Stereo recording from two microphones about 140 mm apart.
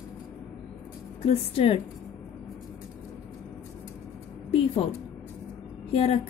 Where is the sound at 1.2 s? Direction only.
45° left (ahead or behind).